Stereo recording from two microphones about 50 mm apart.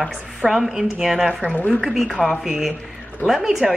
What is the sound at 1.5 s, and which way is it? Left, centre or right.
Speech, left.